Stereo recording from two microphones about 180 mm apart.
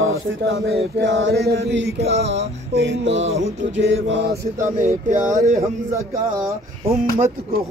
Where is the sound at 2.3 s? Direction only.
80° right.